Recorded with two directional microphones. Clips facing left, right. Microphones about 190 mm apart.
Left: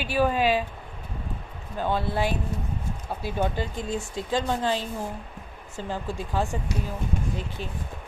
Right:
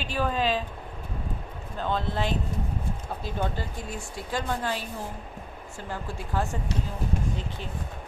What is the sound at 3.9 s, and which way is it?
Speech, 20° left (ahead or behind).